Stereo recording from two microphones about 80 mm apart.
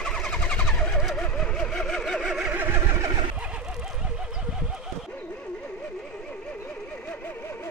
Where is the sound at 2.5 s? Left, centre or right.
Right.